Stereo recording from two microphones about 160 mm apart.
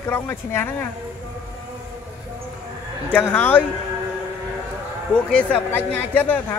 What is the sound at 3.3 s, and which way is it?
Speech, 10° left (ahead or behind).